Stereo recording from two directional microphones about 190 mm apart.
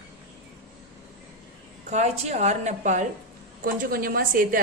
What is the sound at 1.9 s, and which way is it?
Speech, 35° right (ahead or behind).